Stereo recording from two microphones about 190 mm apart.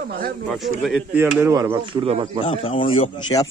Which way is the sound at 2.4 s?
30° left (ahead or behind).